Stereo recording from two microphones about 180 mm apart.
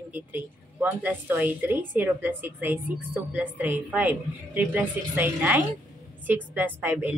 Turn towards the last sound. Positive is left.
turn(degrees=-10)  # may be behind; listen again after turning